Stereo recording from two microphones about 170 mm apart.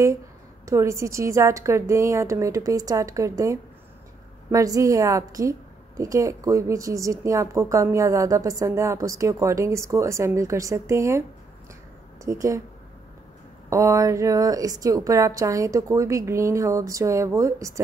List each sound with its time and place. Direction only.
0.7 s a woman's voice: 15° right (ahead or behind)
12.3 s a woman's voice: 20° right (ahead or behind)
13.7 s a woman's voice: 20° right (ahead or behind)